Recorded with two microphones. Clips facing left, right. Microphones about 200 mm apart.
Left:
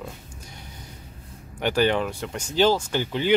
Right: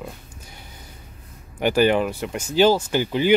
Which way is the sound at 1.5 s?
10° right (ahead or behind).